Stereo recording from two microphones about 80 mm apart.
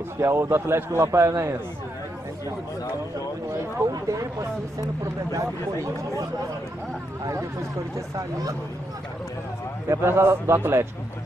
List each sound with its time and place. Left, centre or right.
0.2 s a man's voice: right
3.8 s speech: right
9.8 s a man's voice: right